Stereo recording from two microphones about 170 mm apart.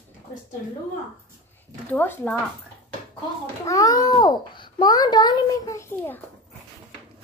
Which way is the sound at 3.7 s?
20° left (ahead or behind).